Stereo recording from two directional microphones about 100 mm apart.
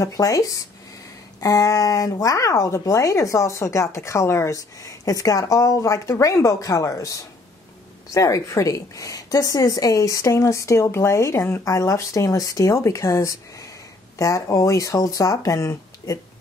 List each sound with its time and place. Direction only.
0.0 s speech: 35° left (ahead or behind)